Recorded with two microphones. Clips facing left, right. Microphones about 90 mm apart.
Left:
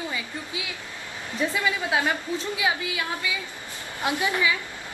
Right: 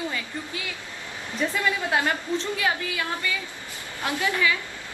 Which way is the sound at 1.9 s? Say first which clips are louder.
Right 1 dB; 10° left (ahead or behind).